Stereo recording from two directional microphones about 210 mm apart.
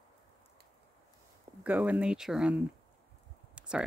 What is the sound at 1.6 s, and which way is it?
Speech, 10° right (ahead or behind).